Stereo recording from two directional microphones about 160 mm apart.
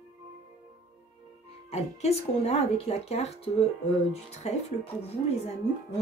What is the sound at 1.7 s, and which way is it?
Speech, 40° left (ahead or behind).